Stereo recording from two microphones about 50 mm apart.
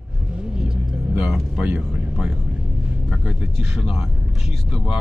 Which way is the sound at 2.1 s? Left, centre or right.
Centre.